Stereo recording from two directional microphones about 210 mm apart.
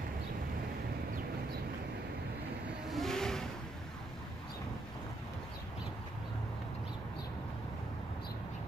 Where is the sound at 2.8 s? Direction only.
Centre (ahead or behind).